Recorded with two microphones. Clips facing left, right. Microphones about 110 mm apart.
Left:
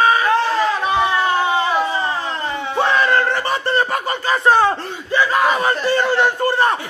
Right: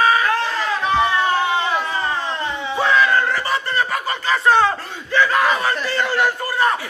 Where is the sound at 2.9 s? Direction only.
35° left (ahead or behind).